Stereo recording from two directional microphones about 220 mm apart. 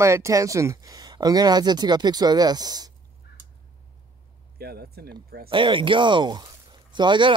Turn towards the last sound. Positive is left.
turn(degrees=-20)  # may be behind; listen again after turning